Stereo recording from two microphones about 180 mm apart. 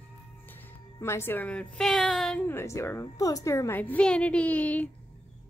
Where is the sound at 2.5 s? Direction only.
15° left (ahead or behind).